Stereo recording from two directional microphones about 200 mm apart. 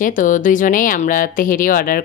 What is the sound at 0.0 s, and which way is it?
Speech, 40° left (ahead or behind).